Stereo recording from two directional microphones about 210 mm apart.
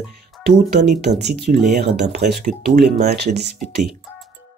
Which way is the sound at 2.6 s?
45° right (ahead or behind).